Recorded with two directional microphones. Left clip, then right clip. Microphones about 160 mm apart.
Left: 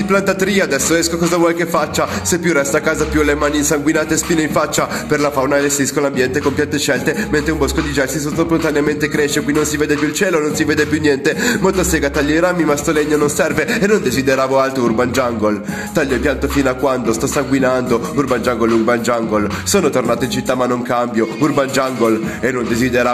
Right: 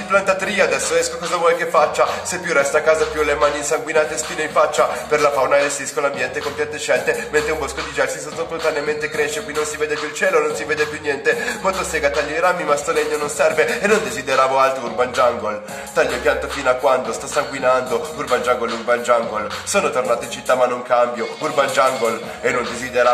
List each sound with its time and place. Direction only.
0.1 s a man's voice: 30° left (ahead or behind)
10.2 s a man's voice: 30° left (ahead or behind)